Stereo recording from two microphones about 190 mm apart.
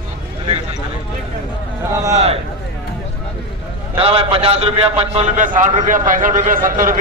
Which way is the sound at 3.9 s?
30° right (ahead or behind).